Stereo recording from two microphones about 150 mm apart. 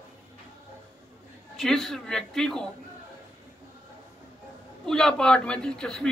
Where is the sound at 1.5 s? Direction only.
Centre (ahead or behind).